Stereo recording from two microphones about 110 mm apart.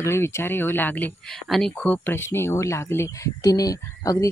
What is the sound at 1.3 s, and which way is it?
Speech, centre (ahead or behind).